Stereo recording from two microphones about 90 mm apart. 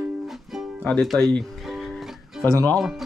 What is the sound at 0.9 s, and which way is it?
Speech, 5° left (ahead or behind).